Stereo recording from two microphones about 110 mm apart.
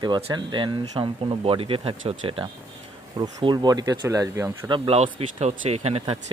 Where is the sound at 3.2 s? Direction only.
40° right (ahead or behind).